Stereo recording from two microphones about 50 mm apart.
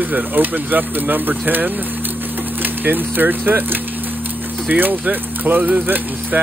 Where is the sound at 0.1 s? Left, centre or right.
Right.